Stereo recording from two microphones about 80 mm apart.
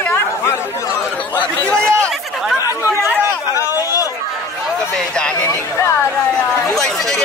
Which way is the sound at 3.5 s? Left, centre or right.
Left.